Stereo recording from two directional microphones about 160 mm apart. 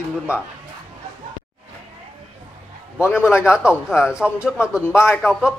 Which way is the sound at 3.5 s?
5° right (ahead or behind).